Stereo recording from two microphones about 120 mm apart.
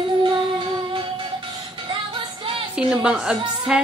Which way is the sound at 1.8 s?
45° right (ahead or behind).